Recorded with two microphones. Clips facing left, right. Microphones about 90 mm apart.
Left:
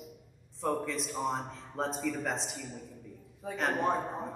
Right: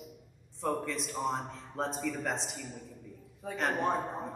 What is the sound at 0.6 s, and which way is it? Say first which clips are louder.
A man's voice: left 1 dB; centre (ahead or behind).